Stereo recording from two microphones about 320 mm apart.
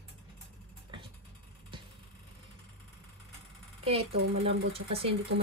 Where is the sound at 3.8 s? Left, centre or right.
Centre.